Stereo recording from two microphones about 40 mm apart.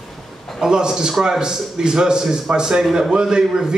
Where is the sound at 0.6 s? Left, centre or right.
Centre.